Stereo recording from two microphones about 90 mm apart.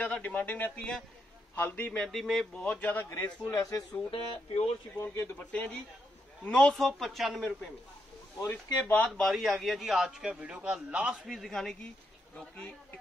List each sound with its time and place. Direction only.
0.0 s speech: 15° left (ahead or behind)
2.0 s speech: 5° left (ahead or behind)
2.6 s speech: 15° left (ahead or behind)
3.4 s speech: 40° left (ahead or behind)
4.1 s speech: 80° left
5.0 s speech: 25° left (ahead or behind)
5.4 s speech: 15° left (ahead or behind)
8.5 s speech: 20° left (ahead or behind)
9.2 s a man's voice: centre (ahead or behind)
11.2 s speech: centre (ahead or behind)
12.4 s speech: 20° left (ahead or behind)